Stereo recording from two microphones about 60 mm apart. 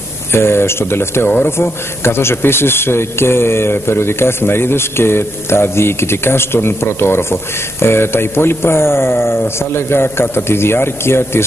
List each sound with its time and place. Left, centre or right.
0.3 s a man's voice: left